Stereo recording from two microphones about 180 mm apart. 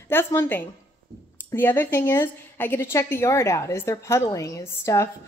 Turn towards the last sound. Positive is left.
turn(degrees=15)  # may be behind; listen again after turning